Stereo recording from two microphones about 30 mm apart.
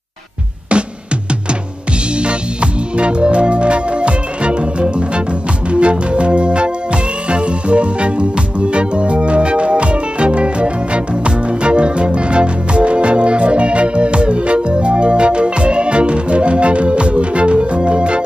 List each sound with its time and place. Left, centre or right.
2.2 s music: right